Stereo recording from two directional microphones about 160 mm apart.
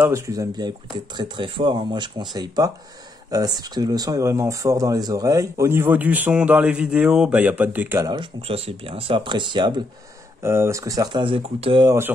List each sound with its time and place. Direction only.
0.0 s speech: 20° right (ahead or behind)
8.1 s speech: 35° right (ahead or behind)
10.4 s speech: 15° right (ahead or behind); by 11.9 s 30° right (ahead or behind)